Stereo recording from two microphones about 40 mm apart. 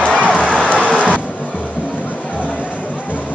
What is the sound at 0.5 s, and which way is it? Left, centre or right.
Run, left.